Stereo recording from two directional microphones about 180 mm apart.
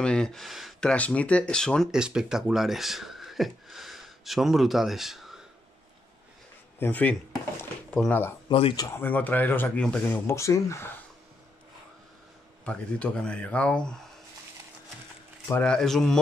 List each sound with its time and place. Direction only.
0.0 s speech: 5° left (ahead or behind)
6.8 s speech: 10° left (ahead or behind)
8.5 s speech: 30° left (ahead or behind)
8.8 s speech: 10° left (ahead or behind)
12.6 s speech: 5° left (ahead or behind)
15.4 s speech: 10° left (ahead or behind)